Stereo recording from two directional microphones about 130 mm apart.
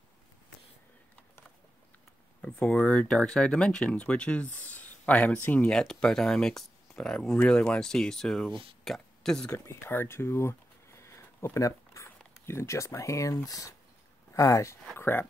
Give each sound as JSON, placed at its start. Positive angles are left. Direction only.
{"t": 2.4, "sound": "speech", "side_deg": 10}
{"t": 9.7, "sound": "speech", "side_deg": 20}